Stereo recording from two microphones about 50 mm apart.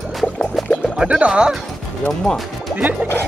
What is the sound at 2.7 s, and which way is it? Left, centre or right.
Music, right.